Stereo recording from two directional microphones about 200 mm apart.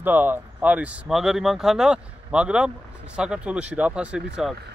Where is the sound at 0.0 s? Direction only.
10° right (ahead or behind).